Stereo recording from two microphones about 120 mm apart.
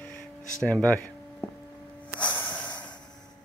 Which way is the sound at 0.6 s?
10° left (ahead or behind).